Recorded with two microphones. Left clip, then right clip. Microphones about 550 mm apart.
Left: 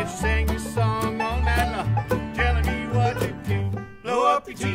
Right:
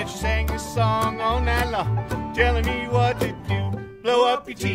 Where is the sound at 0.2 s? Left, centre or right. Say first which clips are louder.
Right 2 dB; right.